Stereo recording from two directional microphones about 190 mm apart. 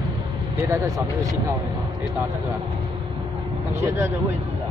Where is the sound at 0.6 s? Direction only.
15° right (ahead or behind).